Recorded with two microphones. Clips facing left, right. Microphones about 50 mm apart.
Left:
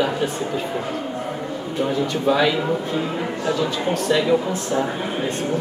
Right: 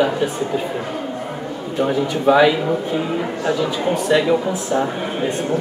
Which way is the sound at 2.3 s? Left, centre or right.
Centre.